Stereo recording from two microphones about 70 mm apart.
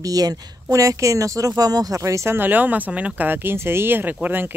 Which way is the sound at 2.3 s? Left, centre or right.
Right.